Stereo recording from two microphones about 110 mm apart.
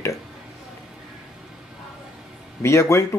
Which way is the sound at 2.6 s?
25° left (ahead or behind).